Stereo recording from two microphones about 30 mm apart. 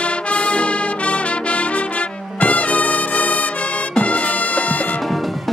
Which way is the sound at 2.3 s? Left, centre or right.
Left.